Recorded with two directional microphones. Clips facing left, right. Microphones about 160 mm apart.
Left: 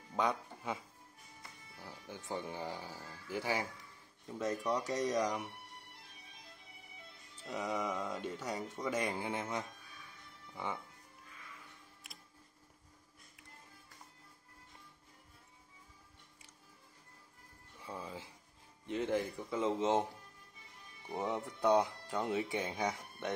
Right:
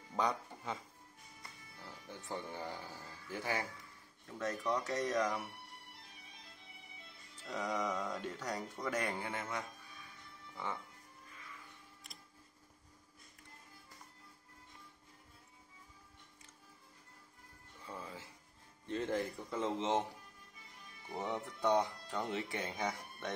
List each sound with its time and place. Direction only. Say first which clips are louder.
0.1 s speech: left 1 dB; 5° left (ahead or behind)
1.9 s speech: left 2 dB; 10° left (ahead or behind)
7.4 s speech: even; 10° left (ahead or behind)
17.8 s music: left 3 dB; 15° left (ahead or behind)
18.9 s speech: left 2 dB; 5° left (ahead or behind)
21.1 s speech: left 2 dB; 15° left (ahead or behind)